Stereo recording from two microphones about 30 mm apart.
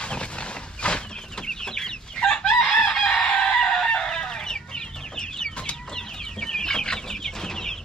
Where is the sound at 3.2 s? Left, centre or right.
Left.